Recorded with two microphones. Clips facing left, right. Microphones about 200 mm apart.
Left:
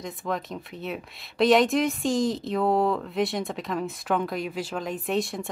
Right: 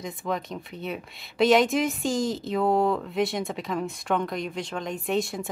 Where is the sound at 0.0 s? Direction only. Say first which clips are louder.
Even; centre (ahead or behind).